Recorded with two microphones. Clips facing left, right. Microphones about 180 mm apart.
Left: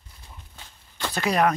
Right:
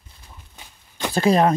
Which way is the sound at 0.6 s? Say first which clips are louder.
Right 4 dB; 15° right (ahead or behind).